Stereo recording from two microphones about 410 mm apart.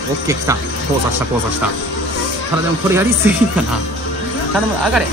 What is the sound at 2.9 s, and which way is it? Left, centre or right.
Speech, centre.